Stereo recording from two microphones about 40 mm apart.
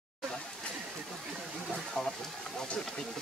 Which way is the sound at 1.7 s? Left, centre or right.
Centre.